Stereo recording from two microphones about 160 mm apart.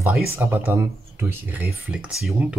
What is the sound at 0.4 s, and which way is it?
Speech, 15° right (ahead or behind).